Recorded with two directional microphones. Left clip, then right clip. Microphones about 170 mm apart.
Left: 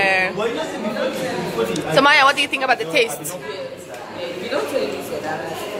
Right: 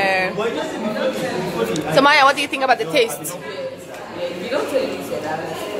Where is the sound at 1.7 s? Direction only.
10° right (ahead or behind).